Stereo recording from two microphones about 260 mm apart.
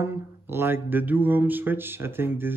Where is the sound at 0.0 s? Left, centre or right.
Centre.